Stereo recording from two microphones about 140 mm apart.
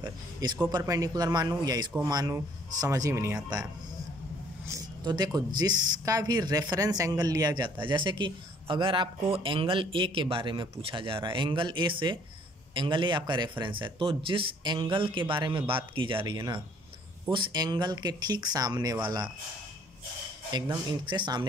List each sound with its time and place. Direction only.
0.0 s speech: 30° right (ahead or behind)
4.6 s speech: 25° right (ahead or behind)
20.5 s speech: 30° right (ahead or behind)